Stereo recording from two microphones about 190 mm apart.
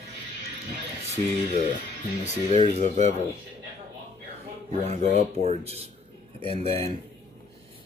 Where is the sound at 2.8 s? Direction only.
35° right (ahead or behind).